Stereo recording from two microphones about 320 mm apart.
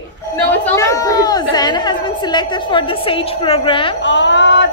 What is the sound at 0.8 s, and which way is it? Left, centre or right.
A woman's voice, centre.